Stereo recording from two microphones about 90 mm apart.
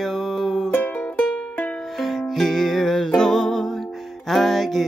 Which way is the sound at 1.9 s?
Centre (ahead or behind).